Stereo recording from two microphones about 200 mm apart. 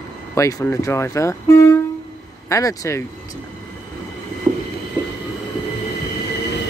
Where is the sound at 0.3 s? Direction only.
15° left (ahead or behind).